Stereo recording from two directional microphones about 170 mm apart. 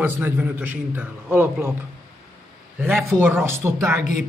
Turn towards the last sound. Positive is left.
turn(degrees=-15)  # may be behind; listen again after turning